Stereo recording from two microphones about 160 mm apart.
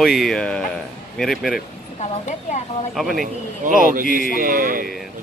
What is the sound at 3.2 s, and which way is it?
A man's voice, 60° right (ahead or behind).